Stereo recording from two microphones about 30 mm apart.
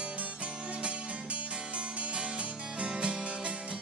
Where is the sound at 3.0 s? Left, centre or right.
Right.